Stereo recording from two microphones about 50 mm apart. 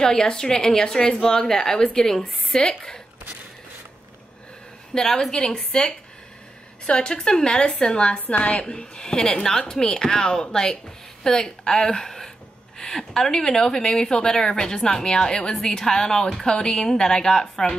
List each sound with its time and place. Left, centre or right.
0.0 s a woman's voice: centre
4.9 s a woman's voice: centre